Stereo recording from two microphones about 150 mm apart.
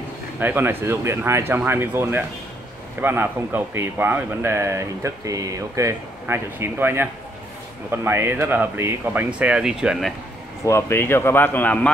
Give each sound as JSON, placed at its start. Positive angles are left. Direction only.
{"t": 0.4, "sound": "speech", "side_deg": -15}
{"t": 10.6, "sound": "a man's voice", "side_deg": 15}